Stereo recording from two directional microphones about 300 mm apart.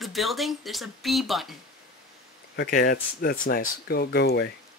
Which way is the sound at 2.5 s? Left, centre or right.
Left.